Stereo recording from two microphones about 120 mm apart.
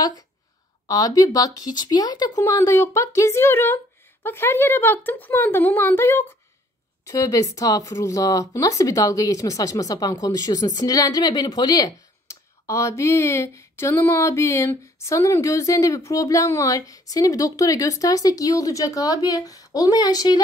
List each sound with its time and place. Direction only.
0.8 s speech: 30° left (ahead or behind)